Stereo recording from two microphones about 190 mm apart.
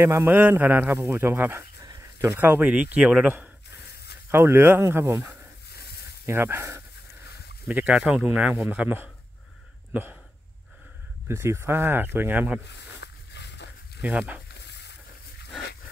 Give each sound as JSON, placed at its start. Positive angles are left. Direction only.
{"t": 0.0, "sound": "a man's voice", "side_deg": -10}
{"t": 3.7, "sound": "snake", "side_deg": 60}
{"t": 4.3, "sound": "a man's voice", "side_deg": -10}
{"t": 6.2, "sound": "a man's voice", "side_deg": -15}
{"t": 11.2, "sound": "a man's voice", "side_deg": -15}
{"t": 12.6, "sound": "a sound", "side_deg": 65}
{"t": 14.0, "sound": "a man's voice", "side_deg": -10}
{"t": 14.5, "sound": "a sound", "side_deg": 65}